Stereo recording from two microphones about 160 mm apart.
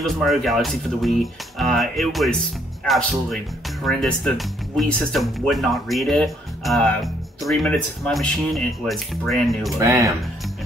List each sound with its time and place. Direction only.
0.0 s speech: centre (ahead or behind)
9.8 s speech: 20° right (ahead or behind)